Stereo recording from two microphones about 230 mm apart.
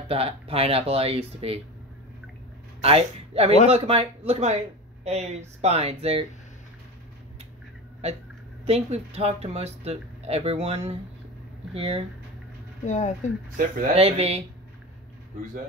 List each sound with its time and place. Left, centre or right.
0.1 s speech: right
2.8 s a man's voice: right
8.6 s speech: right
12.8 s speech: left
13.6 s speech: right